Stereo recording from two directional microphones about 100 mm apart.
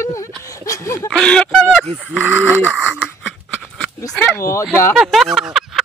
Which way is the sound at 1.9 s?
20° right (ahead or behind).